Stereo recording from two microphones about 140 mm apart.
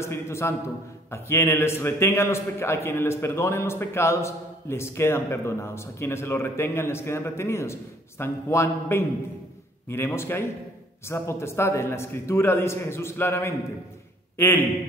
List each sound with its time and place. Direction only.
0.0 s a man's voice: 20° left (ahead or behind)